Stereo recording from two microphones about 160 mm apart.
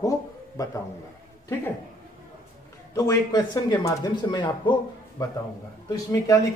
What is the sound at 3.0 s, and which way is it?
Speech, 25° left (ahead or behind).